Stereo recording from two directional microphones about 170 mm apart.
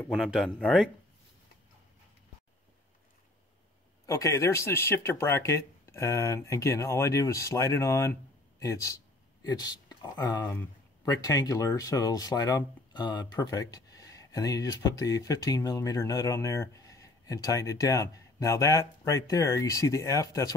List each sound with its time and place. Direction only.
0.2 s speech: centre (ahead or behind)
4.0 s speech: 20° left (ahead or behind)